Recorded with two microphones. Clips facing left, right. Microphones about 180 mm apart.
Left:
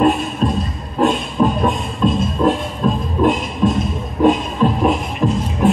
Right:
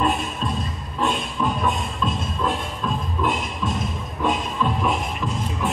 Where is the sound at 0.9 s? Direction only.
45° left (ahead or behind).